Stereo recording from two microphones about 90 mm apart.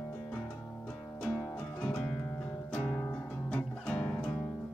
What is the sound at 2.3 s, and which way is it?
Music, 25° left (ahead or behind).